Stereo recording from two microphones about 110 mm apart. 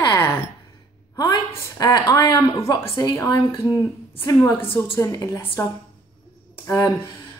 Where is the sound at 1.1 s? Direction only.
35° left (ahead or behind).